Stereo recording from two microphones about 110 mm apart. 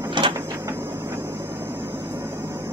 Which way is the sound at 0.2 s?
45° right (ahead or behind).